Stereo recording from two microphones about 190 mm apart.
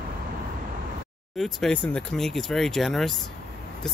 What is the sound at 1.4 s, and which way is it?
Speech, 5° left (ahead or behind).